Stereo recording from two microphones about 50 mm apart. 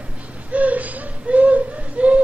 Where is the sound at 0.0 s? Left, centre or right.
Right.